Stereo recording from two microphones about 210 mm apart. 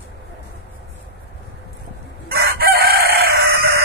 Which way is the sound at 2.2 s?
50° right (ahead or behind).